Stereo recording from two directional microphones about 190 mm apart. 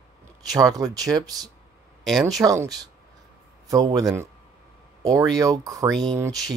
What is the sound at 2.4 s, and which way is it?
A man's voice, 20° right (ahead or behind).